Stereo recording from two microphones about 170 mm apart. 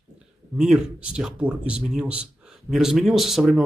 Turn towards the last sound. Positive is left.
turn(degrees=0)  # may be behind; listen again after turning